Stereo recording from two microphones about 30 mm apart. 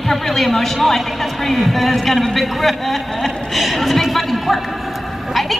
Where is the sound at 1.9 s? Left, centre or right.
Centre.